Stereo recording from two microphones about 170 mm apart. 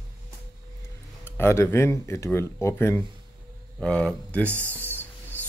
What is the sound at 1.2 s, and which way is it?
Speech, 15° left (ahead or behind).